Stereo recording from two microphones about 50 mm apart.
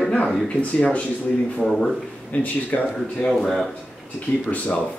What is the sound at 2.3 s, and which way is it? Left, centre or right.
Speech, left.